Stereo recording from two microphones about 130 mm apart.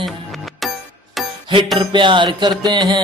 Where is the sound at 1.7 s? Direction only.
40° right (ahead or behind).